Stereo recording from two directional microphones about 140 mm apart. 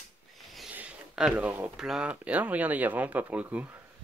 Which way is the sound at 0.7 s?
5° right (ahead or behind).